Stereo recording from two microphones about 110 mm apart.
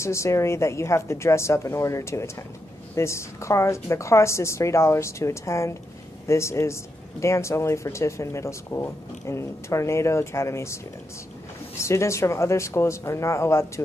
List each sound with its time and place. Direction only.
0.0 s speech: 25° left (ahead or behind)
11.8 s speech: 25° left (ahead or behind)